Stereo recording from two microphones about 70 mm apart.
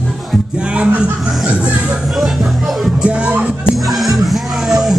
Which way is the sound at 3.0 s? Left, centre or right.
Centre.